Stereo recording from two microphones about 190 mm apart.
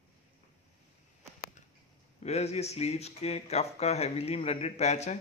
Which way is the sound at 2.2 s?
35° left (ahead or behind).